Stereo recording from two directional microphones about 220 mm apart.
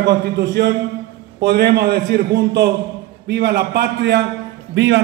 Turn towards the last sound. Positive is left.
turn(degrees=-55)  # may be behind; listen again after turning